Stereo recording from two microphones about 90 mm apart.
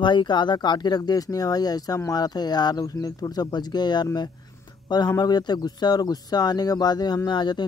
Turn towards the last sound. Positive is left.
turn(degrees=55)  # may be behind; listen again after turning